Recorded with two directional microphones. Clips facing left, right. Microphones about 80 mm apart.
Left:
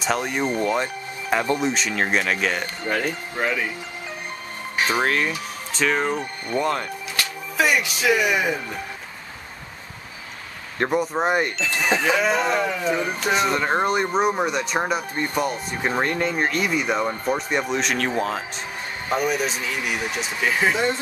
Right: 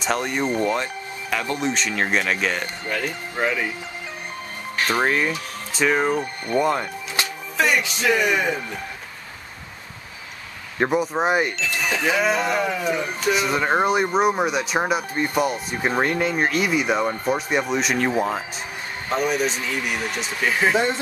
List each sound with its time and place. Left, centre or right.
0.0 s speech: centre
1.3 s speech: left
1.6 s speech: centre
4.7 s music: centre
5.0 s speech: centre
7.2 s music: right
7.5 s speech: centre
10.8 s speech: centre
19.0 s speech: centre